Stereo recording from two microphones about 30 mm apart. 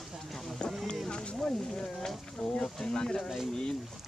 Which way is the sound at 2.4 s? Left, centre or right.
Centre.